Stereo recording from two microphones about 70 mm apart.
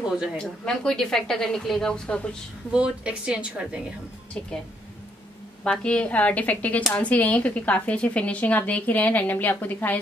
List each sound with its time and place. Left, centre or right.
0.4 s a woman's voice: centre
2.7 s a woman's voice: centre
5.6 s a woman's voice: centre